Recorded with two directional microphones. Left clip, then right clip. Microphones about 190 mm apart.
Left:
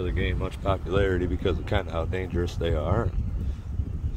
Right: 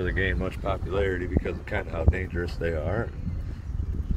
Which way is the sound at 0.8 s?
20° left (ahead or behind).